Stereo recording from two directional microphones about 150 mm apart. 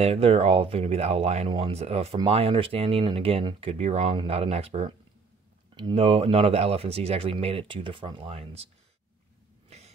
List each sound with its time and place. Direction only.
0.0 s speech: 45° right (ahead or behind)
5.8 s speech: 30° right (ahead or behind)
6.0 s speech: 40° right (ahead or behind)
9.7 s a sound: 45° right (ahead or behind)